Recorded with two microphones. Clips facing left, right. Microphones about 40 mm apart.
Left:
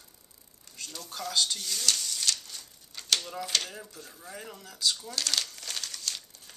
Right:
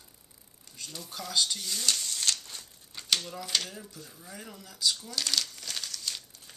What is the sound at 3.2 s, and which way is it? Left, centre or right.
Speech, centre.